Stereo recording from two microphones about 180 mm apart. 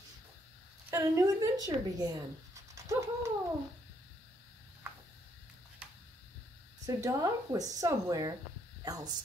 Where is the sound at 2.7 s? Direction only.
15° right (ahead or behind).